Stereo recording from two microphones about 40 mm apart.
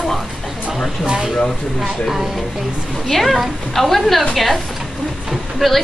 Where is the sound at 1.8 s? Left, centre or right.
Centre.